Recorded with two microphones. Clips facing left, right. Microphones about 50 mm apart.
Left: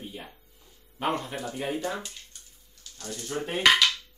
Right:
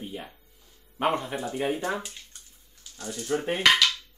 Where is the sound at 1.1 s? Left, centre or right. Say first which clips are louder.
Right 3 dB; right.